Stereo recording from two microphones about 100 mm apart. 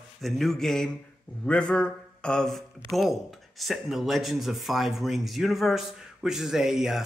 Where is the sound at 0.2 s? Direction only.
Centre (ahead or behind).